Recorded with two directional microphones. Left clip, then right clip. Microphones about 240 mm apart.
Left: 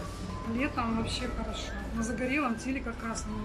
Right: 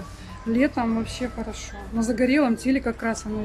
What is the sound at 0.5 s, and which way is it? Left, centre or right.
A woman's voice, right.